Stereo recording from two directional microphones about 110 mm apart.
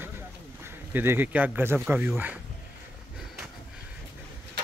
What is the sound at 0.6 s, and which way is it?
Speech, 20° right (ahead or behind).